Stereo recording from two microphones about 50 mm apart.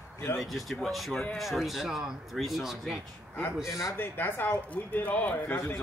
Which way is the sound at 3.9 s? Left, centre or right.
Left.